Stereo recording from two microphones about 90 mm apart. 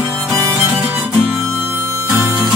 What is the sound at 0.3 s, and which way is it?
Music, 30° right (ahead or behind).